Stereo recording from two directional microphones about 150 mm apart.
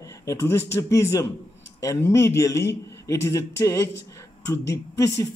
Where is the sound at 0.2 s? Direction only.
20° left (ahead or behind).